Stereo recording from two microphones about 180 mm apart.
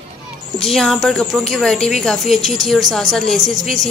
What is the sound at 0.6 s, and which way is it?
A woman's voice, centre (ahead or behind).